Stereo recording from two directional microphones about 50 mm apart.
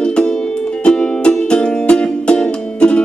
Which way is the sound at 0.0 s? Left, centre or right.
Centre.